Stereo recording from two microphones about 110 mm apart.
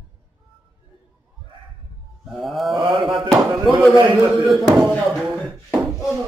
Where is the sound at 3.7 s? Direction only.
35° right (ahead or behind).